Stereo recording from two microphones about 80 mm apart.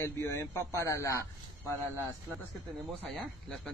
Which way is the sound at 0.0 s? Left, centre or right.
Left.